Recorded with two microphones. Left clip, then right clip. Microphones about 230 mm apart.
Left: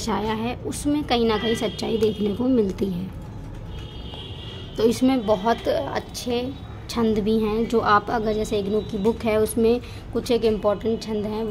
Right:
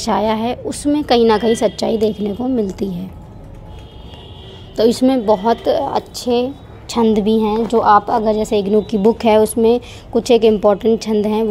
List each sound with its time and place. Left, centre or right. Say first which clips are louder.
0.0 s a woman's voice: right 9 dB; right
4.7 s a woman's voice: right 7 dB; right
8.2 s a woman's voice: right 8 dB; right